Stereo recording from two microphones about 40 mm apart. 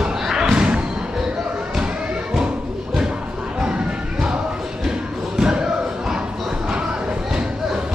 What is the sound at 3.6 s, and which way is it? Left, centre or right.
Music, right.